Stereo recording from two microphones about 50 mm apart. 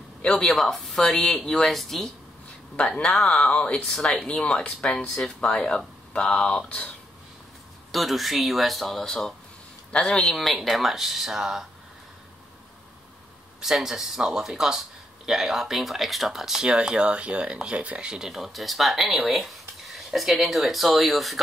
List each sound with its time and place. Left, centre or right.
0.2 s speech: centre
0.6 s speech: centre
3.3 s speech: left
7.9 s speech: centre
13.6 s speech: centre
18.3 s speech: centre